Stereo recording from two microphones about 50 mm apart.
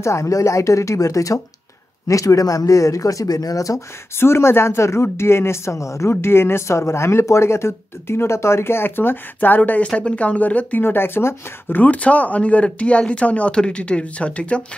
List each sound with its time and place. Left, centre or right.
0.0 s speech: left
4.2 s speech: left
10.8 s speech: left
11.8 s speech: left